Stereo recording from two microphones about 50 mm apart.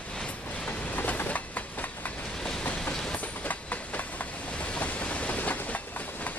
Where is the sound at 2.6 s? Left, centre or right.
Left.